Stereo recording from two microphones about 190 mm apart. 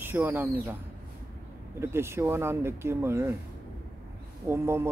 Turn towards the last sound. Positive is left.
turn(degrees=-15)  # may be behind; listen again after turning